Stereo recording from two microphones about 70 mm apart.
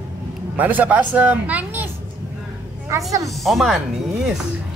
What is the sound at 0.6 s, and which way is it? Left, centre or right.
Speech, right.